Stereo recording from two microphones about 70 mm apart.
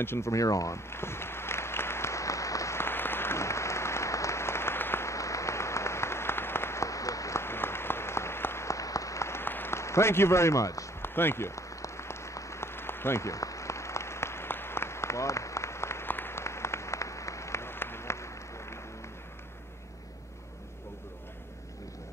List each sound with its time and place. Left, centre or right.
0.0 s speech: left
0.3 s speech: left
0.8 s applause: left
2.8 s applause: left
5.1 s a sound: left
9.4 s a man's voice: left
11.0 s applause: left